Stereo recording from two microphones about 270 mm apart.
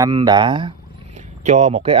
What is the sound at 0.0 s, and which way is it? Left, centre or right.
Speech, centre.